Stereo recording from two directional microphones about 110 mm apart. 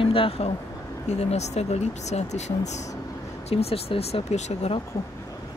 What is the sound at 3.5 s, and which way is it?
Speech, 65° left (ahead or behind).